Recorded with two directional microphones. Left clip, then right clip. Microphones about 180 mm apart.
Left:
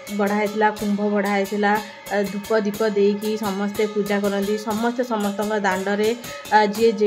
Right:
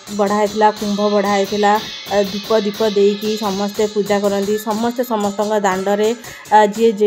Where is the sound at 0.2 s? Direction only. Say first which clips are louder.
Right 6 dB; 20° right (ahead or behind).